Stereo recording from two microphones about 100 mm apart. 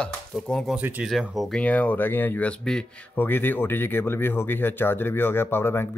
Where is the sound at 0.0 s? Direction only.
5° left (ahead or behind).